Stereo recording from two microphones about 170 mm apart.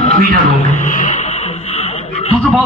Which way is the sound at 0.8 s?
50° left (ahead or behind).